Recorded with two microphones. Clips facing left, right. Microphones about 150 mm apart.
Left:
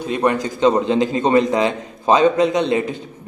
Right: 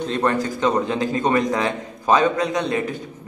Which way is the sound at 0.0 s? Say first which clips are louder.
Left 3 dB; 10° left (ahead or behind).